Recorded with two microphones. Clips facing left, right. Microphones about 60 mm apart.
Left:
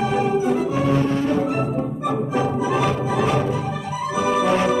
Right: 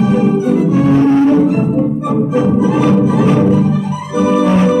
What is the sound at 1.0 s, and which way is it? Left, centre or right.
Music, right.